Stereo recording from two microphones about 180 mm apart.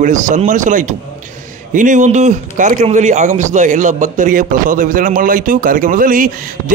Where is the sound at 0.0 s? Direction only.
45° right (ahead or behind).